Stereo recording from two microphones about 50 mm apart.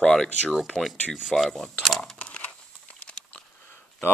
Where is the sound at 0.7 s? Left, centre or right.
Centre.